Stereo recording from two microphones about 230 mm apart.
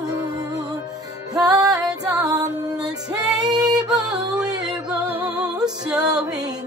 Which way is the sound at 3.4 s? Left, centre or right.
Centre.